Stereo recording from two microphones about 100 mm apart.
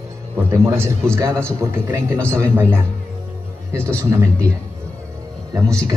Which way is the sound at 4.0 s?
30° right (ahead or behind).